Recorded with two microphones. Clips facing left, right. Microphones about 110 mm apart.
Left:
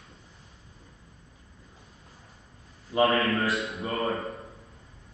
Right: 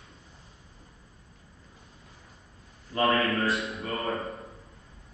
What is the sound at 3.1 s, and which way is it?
Speech, centre (ahead or behind).